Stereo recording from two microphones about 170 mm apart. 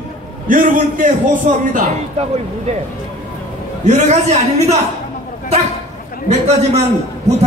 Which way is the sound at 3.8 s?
40° right (ahead or behind).